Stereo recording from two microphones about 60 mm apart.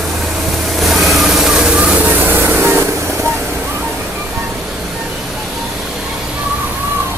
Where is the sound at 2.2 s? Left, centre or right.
Right.